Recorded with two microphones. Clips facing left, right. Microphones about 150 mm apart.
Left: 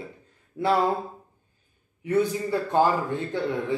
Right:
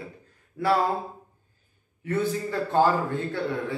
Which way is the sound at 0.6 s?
20° left (ahead or behind).